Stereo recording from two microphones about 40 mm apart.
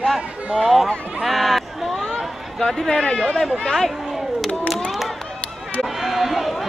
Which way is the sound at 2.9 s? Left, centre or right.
Centre.